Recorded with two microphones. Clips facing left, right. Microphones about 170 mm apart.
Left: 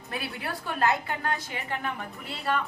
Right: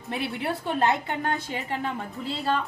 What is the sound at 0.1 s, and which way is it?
A woman's voice, 25° right (ahead or behind).